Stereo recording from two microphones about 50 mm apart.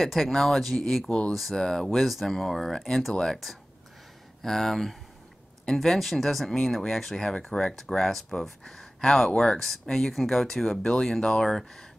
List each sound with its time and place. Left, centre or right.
0.0 s speech: centre